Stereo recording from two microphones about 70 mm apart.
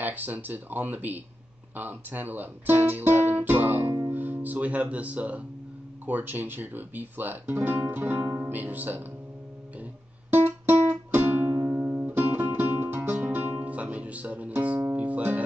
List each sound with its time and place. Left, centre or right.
0.0 s speech: right
10.3 s music: right